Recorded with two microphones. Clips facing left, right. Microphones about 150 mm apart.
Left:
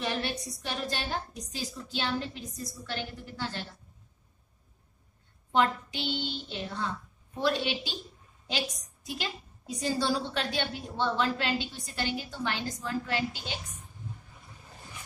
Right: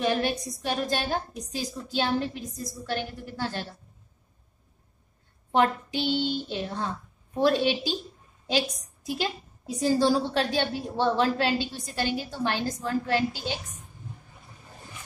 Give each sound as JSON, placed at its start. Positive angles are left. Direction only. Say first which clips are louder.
{"t": 0.1, "sound": "a woman's voice", "louder": "right 6 dB", "side_deg": -40}
{"t": 5.5, "sound": "a woman's voice", "louder": "right 3 dB", "side_deg": -40}
{"t": 9.8, "sound": "a woman's voice", "louder": "right 7 dB", "side_deg": -40}